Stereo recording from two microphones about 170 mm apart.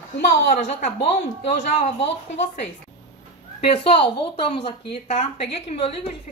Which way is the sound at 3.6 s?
35° left (ahead or behind).